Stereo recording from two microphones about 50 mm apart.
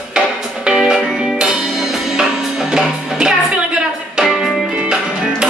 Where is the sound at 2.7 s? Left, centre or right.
Centre.